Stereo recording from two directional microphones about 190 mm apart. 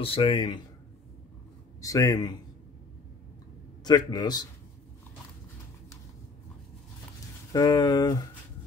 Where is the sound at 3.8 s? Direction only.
20° left (ahead or behind).